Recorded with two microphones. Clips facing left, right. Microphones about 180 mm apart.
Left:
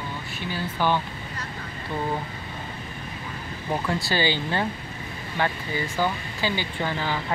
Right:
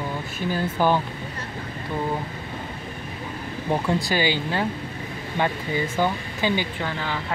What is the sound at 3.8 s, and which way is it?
Speech, 10° right (ahead or behind).